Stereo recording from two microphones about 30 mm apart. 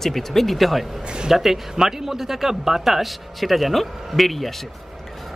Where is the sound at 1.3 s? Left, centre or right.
Centre.